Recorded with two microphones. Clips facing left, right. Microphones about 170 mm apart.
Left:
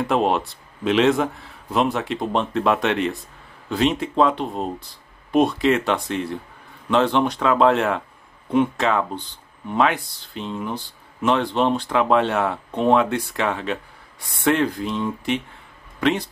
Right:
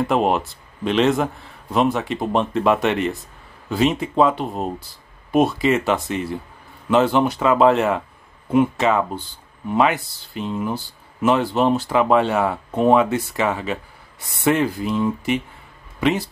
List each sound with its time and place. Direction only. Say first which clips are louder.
0.0 s speech: right 1 dB; centre (ahead or behind)